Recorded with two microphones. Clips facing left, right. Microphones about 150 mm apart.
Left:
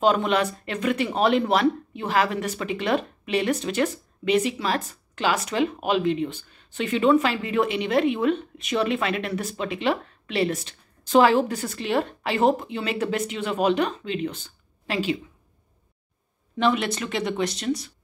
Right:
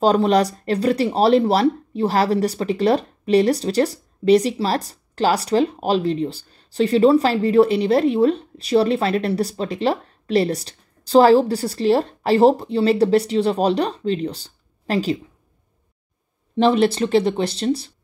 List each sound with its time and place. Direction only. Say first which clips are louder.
0.0 s speech: right 5 dB; 35° right (ahead or behind)
16.5 s speech: right 7 dB; 35° right (ahead or behind)